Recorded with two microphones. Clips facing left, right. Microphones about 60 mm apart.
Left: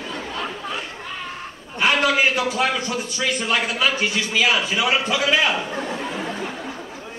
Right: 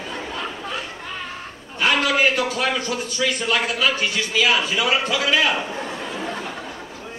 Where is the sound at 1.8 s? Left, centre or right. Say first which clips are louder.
Even; centre.